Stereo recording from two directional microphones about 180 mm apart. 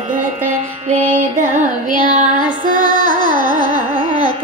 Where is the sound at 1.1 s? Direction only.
50° right (ahead or behind).